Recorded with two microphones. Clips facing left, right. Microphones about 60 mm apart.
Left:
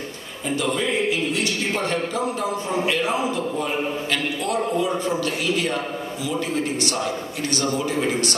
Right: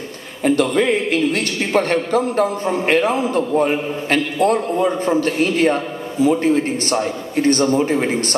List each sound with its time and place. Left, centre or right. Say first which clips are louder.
0.4 s a man's voice: right 8 dB; right